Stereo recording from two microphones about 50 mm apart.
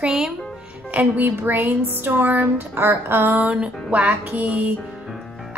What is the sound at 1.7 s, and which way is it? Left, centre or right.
Speech, right.